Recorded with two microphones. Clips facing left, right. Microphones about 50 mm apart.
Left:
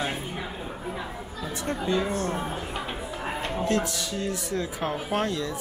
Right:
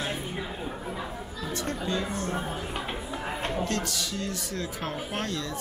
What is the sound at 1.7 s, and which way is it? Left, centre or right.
Speech, left.